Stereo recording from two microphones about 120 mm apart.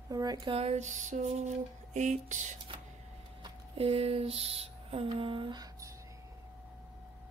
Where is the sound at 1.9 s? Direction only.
85° right.